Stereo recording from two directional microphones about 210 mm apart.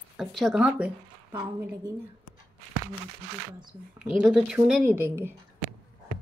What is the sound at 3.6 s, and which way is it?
Speech, 5° right (ahead or behind).